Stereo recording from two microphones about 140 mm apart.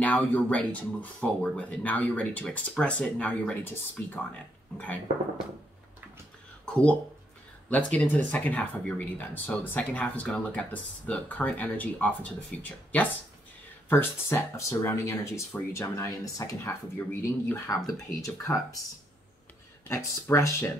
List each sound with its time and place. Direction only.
0.0 s speech: 10° left (ahead or behind)
6.6 s a sound: 10° left (ahead or behind)
7.7 s speech: 10° left (ahead or behind)
19.9 s speech: 20° left (ahead or behind)